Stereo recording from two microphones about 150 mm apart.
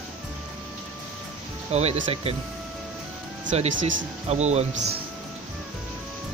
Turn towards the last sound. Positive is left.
turn(degrees=-45)  # may be behind; listen again after turning